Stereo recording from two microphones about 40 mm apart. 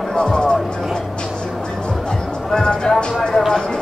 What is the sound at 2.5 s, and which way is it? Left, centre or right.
Music, centre.